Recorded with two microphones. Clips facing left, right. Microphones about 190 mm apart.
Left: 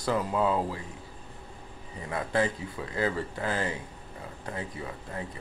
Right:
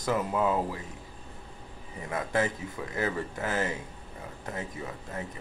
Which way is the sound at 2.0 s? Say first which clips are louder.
Left 1 dB; 20° right (ahead or behind).